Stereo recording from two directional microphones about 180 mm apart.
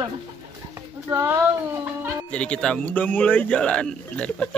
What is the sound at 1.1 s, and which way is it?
Speech, 15° right (ahead or behind).